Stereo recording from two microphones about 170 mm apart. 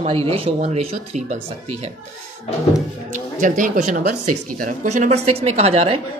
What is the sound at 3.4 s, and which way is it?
A woman's voice, 50° right (ahead or behind).